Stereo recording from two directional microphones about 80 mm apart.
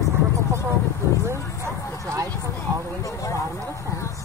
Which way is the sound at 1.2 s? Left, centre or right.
Right.